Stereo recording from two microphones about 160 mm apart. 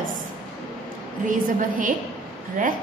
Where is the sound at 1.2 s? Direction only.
55° right (ahead or behind).